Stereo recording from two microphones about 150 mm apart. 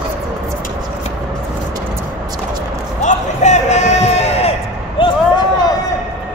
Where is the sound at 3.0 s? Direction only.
50° left (ahead or behind); by 5.1 s 35° left (ahead or behind).